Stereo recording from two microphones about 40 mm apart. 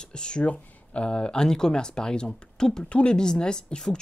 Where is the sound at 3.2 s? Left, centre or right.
Centre.